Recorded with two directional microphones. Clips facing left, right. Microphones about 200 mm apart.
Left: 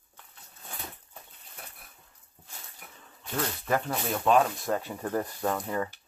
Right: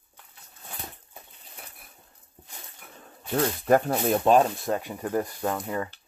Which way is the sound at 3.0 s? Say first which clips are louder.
Right 7 dB; 45° right (ahead or behind).